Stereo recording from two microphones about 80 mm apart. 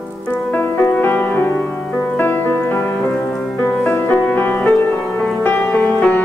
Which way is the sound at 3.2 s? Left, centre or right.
Centre.